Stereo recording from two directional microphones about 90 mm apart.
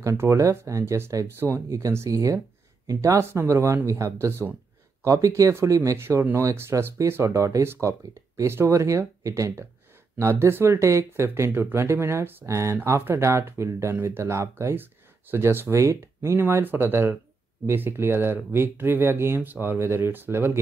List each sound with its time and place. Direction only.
0.0 s speech: 30° right (ahead or behind)